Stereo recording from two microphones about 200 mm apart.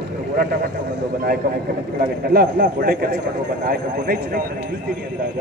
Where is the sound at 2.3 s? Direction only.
50° right (ahead or behind).